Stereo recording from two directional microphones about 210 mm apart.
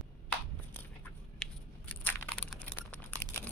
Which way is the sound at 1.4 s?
5° left (ahead or behind).